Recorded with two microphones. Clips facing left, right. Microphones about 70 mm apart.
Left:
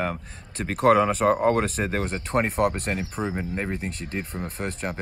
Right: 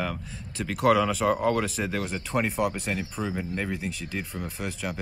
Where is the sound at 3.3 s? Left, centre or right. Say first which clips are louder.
Left 2 dB; left.